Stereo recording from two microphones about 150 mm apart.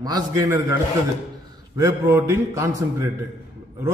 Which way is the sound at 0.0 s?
25° right (ahead or behind).